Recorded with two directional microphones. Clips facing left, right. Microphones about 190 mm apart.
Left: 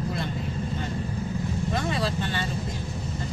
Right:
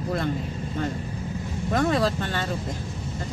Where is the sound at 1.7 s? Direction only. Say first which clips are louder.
Right 8 dB; 45° right (ahead or behind).